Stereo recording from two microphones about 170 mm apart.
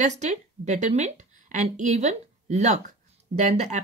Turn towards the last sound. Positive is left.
turn(degrees=-40)  # may be behind; listen again after turning